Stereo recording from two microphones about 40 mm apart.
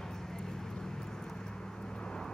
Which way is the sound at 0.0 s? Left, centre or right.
Centre.